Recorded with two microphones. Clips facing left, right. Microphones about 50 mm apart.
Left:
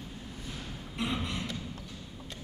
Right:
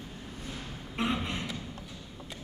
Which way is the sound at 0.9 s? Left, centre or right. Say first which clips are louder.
Right 2 dB; right.